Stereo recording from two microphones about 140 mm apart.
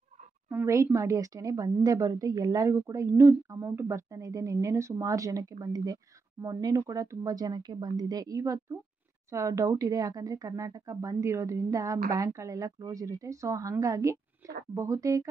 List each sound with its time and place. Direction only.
0.5 s a woman's voice: 20° right (ahead or behind)